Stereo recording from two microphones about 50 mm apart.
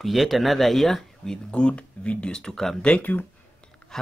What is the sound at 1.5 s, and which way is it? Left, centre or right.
Speech, left.